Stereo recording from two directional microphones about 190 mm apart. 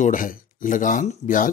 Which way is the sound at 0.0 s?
45° left (ahead or behind).